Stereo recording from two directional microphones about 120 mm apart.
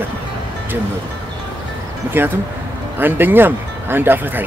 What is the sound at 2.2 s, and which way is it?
Speech, 20° right (ahead or behind).